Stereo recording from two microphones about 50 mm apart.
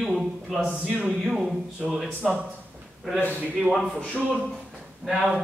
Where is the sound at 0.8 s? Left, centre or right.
Centre.